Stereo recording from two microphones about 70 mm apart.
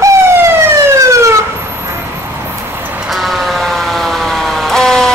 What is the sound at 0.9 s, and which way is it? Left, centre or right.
Emergency vehicle, right.